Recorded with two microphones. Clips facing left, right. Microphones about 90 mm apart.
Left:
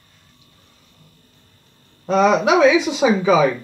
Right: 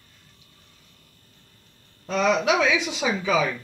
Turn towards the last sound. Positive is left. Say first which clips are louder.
# left 8 dB
turn(degrees=20)  # may be behind; listen again after turning